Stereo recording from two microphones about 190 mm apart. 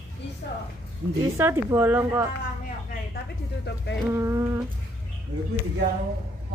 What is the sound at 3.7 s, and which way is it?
Speech, 60° left (ahead or behind).